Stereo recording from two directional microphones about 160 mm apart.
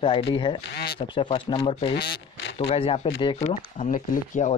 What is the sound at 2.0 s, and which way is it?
Speech, 90° left.